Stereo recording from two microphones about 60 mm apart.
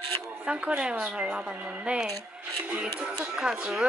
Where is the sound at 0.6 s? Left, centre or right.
Centre.